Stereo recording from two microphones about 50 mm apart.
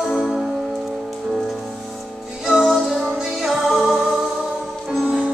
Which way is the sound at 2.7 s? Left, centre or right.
Centre.